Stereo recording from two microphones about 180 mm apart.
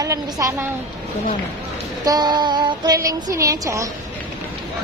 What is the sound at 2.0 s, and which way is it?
Speech, 25° right (ahead or behind).